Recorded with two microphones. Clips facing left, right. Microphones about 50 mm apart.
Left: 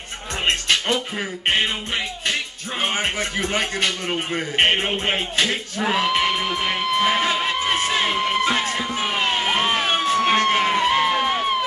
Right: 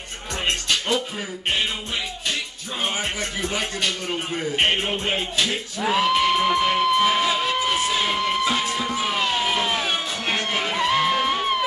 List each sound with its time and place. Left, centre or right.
0.5 s music: left
2.8 s speech: left
4.6 s speech: left
5.9 s speech: centre
7.1 s speech: left
7.6 s a sound: left
8.2 s music: left
8.9 s emergency vehicle: left
11.0 s music: centre